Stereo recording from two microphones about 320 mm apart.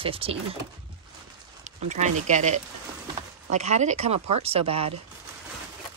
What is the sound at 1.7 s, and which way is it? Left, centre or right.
Speech, right.